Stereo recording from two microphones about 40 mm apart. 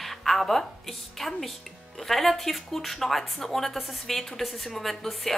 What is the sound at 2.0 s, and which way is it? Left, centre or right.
A woman's voice, centre.